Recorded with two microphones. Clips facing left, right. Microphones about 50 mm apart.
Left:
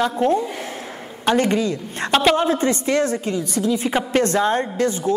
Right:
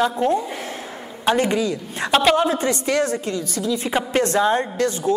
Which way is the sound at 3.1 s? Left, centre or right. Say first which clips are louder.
Left 1 dB; centre.